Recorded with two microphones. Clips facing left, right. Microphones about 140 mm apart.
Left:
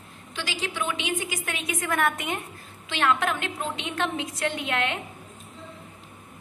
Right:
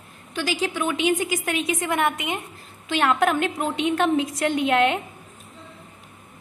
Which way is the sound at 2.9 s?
40° right (ahead or behind).